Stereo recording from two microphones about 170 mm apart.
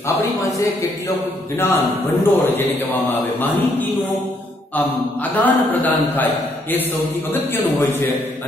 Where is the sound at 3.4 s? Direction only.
10° left (ahead or behind).